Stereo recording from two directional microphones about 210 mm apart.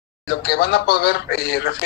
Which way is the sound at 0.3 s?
50° left (ahead or behind).